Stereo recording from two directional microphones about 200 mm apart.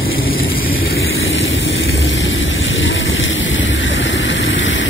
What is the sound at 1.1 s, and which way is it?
Vehicle, 75° left (ahead or behind).